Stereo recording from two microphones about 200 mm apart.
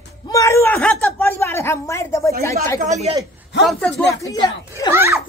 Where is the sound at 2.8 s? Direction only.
35° right (ahead or behind).